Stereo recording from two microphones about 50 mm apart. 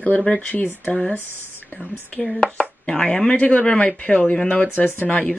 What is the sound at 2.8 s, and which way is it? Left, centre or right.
Speech, centre.